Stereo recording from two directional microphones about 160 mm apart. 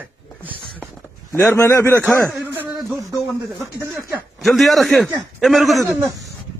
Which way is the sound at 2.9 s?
20° right (ahead or behind).